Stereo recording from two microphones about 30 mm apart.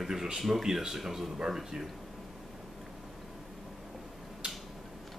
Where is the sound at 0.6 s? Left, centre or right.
Centre.